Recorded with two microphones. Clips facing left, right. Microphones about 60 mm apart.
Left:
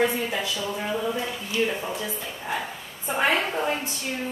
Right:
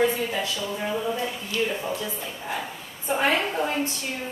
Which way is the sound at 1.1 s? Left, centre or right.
Centre.